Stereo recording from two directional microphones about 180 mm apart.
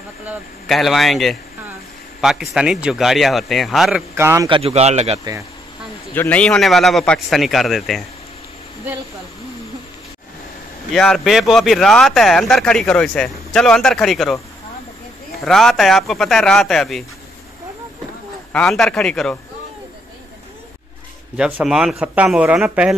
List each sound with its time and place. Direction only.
0.2 s speech: 5° right (ahead or behind)
4.1 s a man's voice: 15° right (ahead or behind)
4.5 s speech: 30° right (ahead or behind)
6.1 s speech: 10° left (ahead or behind)
10.9 s speech: centre (ahead or behind)
15.4 s speech: centre (ahead or behind)
18.5 s speech: 5° left (ahead or behind)
21.4 s speech: 5° right (ahead or behind)